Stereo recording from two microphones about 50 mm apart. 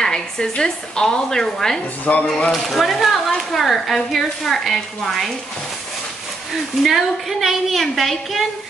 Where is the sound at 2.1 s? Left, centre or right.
Left.